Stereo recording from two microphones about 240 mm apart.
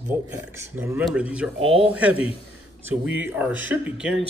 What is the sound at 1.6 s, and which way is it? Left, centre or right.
Speech, right.